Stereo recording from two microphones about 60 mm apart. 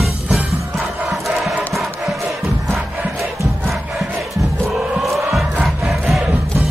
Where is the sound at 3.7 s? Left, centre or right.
Centre.